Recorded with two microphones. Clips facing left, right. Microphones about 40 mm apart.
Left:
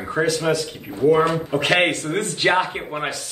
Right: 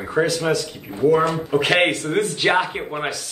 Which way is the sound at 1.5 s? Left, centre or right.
Centre.